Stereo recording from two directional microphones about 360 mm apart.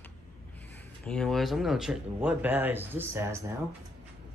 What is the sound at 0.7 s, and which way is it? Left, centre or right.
Speech, centre.